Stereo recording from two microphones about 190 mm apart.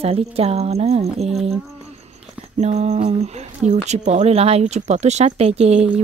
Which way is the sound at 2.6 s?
35° right (ahead or behind).